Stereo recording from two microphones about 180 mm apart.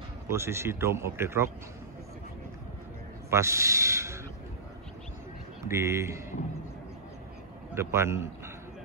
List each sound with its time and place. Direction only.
0.3 s a man's voice: 15° right (ahead or behind)
3.3 s speech: 15° right (ahead or behind)
5.7 s a man's voice: 15° right (ahead or behind)
7.7 s a man's voice: 15° right (ahead or behind)